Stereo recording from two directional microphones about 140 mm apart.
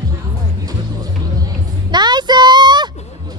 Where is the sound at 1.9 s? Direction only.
30° right (ahead or behind).